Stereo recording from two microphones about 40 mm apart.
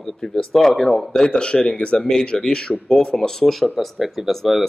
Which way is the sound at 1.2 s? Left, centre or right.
Left.